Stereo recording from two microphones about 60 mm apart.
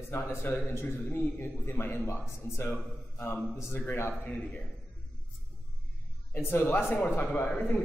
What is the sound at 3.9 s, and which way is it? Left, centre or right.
Speech, left.